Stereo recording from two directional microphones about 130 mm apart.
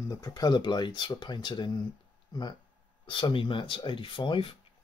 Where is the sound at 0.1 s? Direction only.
30° left (ahead or behind).